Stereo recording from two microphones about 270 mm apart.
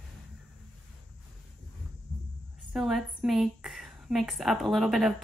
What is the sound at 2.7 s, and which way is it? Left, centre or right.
A woman's voice, centre.